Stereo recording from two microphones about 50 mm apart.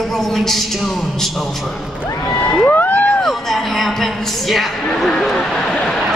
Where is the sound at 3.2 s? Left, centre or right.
Centre.